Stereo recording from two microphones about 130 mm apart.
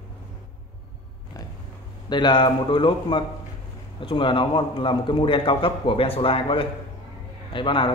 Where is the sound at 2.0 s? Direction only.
35° left (ahead or behind).